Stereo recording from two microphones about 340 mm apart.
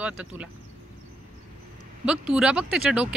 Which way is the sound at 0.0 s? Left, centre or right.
Centre.